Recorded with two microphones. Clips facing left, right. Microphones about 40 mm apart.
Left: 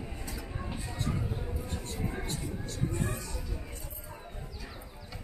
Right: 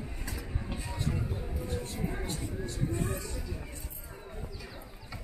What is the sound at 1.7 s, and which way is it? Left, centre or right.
Vehicle, centre.